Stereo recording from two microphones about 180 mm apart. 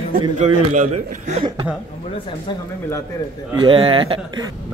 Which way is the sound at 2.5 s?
25° left (ahead or behind).